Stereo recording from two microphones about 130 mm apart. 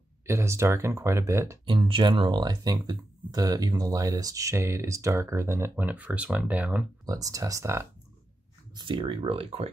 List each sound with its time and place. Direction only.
0.3 s speech: 20° right (ahead or behind)
1.7 s speech: 40° right (ahead or behind); by 6.9 s 10° right (ahead or behind)
7.1 s speech: 25° right (ahead or behind)
8.7 s speech: 40° right (ahead or behind)